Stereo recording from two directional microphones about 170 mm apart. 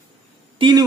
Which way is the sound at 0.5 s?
25° right (ahead or behind).